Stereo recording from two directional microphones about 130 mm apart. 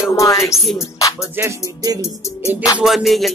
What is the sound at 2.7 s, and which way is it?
Music, centre (ahead or behind).